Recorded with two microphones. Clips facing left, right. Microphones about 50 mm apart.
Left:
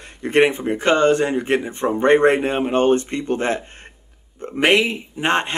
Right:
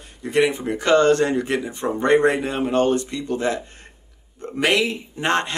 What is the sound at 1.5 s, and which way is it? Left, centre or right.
Speech, left.